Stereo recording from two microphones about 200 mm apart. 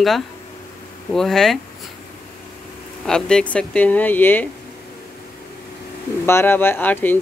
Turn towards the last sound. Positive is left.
turn(degrees=10)  # may be behind; listen again after turning